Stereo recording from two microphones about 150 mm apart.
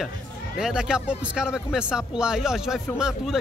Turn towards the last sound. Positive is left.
turn(degrees=-5)  # may be behind; listen again after turning